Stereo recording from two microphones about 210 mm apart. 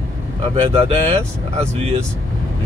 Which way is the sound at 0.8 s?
30° right (ahead or behind).